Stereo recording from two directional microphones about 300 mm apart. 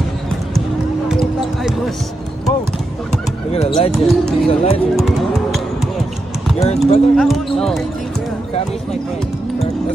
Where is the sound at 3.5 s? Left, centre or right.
Centre.